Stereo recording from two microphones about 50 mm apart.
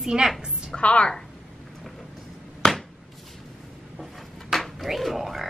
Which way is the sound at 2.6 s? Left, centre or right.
Centre.